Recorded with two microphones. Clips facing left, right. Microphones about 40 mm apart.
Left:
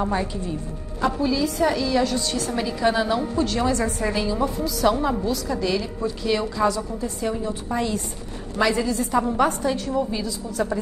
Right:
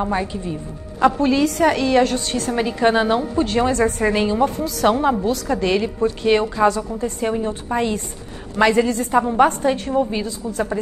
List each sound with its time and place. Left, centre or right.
0.0 s a woman's voice: centre
1.2 s a woman's voice: right